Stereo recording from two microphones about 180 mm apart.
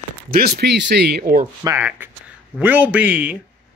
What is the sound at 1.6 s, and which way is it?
Speech, 15° right (ahead or behind).